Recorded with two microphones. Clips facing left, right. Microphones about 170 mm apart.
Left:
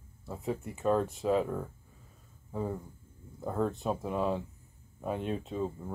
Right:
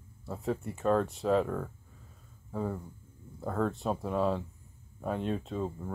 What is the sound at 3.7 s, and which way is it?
Speech, centre (ahead or behind).